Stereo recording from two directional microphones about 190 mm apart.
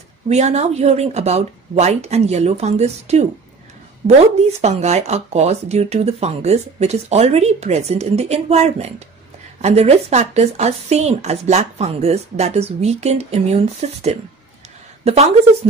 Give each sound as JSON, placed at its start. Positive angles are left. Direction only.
{"t": 0.3, "sound": "a woman's voice", "side_deg": -35}
{"t": 4.5, "sound": "a woman's voice", "side_deg": -35}